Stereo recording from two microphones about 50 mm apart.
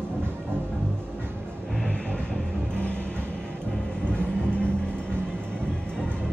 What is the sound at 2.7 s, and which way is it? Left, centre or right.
Vehicle, left.